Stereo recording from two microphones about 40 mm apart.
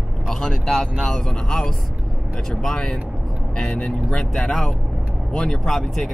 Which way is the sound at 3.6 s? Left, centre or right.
Left.